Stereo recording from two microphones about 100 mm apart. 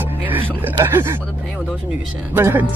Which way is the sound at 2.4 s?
25° right (ahead or behind).